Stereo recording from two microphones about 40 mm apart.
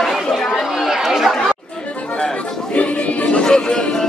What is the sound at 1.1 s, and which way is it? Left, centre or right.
Speech, centre.